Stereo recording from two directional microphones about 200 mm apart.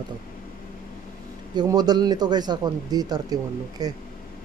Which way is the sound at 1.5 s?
20° right (ahead or behind).